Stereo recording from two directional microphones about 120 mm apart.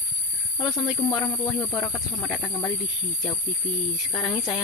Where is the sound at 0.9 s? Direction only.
15° left (ahead or behind).